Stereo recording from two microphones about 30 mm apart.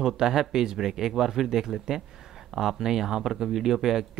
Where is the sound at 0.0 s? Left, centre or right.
Centre.